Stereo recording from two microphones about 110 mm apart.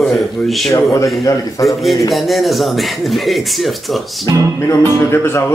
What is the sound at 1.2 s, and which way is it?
Speech, 30° left (ahead or behind).